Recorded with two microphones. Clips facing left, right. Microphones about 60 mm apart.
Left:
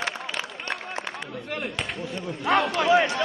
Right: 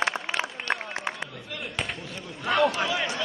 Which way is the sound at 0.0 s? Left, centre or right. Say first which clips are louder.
Right 3 dB; right.